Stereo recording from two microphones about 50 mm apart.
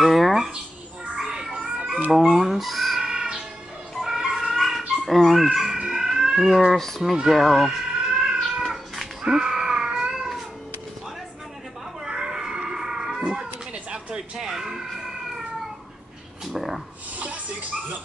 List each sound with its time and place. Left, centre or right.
0.0 s a sound: centre
1.1 s music: centre
2.0 s chicken: centre
3.0 s crow: centre
4.0 s chicken: centre
5.5 s a sound: centre
7.2 s speech: centre
8.2 s cat: centre
12.0 s cat: centre
16.5 s a sound: centre
17.2 s music: right